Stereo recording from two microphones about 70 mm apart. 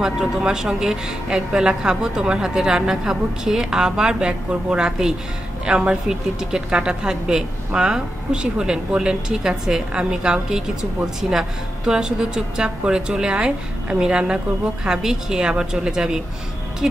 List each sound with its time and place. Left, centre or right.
0.0 s a woman's voice: centre